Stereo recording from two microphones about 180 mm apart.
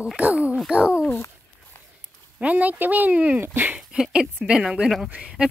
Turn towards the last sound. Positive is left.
turn(degrees=-5)  # may be behind; listen again after turning